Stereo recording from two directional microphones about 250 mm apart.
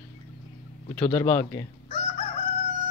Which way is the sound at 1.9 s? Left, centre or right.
Left.